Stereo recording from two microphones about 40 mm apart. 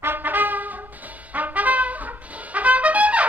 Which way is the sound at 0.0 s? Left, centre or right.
Right.